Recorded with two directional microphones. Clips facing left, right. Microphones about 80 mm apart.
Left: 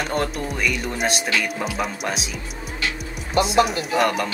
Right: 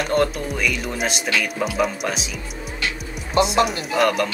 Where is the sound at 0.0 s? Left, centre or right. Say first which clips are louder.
Right 4 dB; centre.